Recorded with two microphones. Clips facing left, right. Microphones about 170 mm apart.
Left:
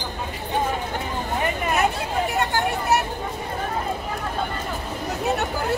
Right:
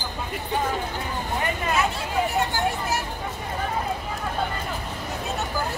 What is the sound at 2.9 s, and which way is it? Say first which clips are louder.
Vehicle: left 7 dB; 65° left (ahead or behind).